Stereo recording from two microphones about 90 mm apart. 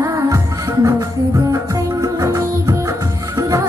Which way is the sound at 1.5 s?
40° right (ahead or behind).